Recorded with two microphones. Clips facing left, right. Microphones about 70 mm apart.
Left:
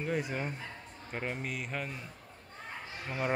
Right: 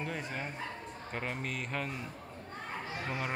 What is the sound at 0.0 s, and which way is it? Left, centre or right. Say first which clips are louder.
A man's voice: left 4 dB; centre.